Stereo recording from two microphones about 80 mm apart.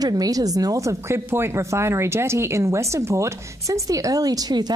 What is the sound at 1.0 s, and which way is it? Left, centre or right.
Speech, right.